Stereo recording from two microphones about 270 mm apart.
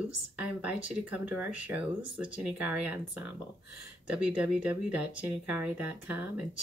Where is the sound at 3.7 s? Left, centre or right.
Right.